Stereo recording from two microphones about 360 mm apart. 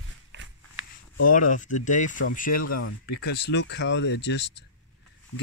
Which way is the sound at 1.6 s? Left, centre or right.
Left.